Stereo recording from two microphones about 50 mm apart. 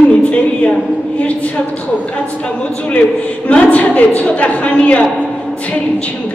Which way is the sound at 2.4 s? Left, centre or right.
Left.